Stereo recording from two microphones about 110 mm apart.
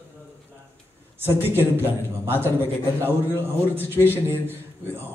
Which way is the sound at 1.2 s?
20° right (ahead or behind).